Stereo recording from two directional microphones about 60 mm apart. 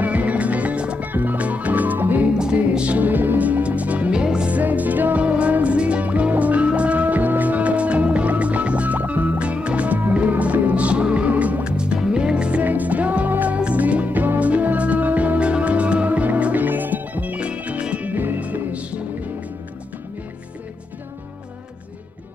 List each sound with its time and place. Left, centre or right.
0.0 s music: right
2.3 s music: centre
18.1 s music: right
18.4 s music: right